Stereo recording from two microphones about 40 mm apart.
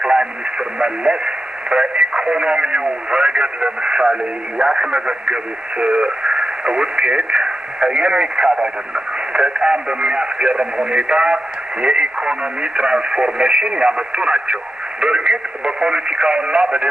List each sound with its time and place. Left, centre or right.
0.0 s speech: right